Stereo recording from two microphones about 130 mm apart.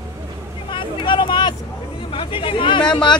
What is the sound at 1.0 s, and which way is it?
Vehicle, 35° left (ahead or behind).